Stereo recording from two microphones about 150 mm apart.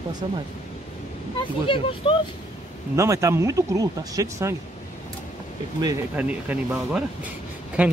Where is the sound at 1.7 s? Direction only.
35° left (ahead or behind).